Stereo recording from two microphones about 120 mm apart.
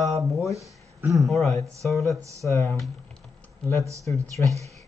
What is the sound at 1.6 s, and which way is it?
Speech, 25° right (ahead or behind).